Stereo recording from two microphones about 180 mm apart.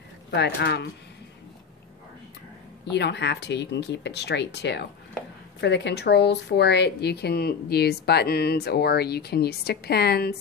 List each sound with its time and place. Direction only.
0.3 s speech: 70° left (ahead or behind)
2.9 s speech: 70° left (ahead or behind)